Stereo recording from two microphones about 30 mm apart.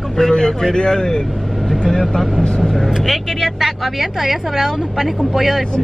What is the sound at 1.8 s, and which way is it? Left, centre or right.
Speech, centre.